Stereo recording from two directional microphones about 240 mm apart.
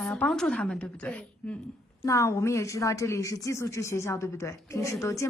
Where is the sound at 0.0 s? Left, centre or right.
Centre.